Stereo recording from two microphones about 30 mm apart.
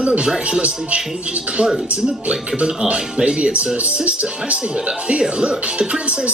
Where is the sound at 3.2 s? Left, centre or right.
Right.